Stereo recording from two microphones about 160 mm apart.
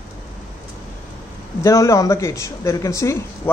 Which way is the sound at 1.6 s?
20° left (ahead or behind).